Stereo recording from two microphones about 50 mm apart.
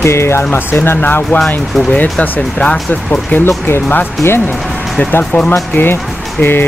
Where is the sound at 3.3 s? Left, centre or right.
Left.